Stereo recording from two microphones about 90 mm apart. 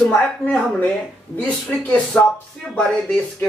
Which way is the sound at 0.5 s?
10° left (ahead or behind).